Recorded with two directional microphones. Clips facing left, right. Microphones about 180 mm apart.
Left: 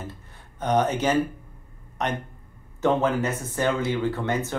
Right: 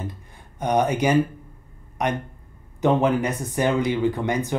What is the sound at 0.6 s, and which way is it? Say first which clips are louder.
Speech: right 2 dB; 15° right (ahead or behind).